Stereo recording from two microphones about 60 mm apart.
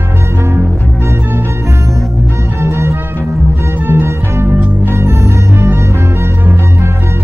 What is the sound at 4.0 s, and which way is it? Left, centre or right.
Music, right.